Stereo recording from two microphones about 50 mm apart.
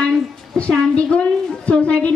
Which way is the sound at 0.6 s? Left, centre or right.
Left.